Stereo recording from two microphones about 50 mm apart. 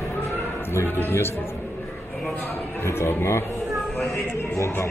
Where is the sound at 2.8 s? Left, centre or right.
Left.